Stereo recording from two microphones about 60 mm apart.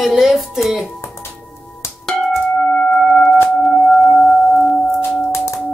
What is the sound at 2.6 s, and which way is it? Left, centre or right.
Tuning fork, left.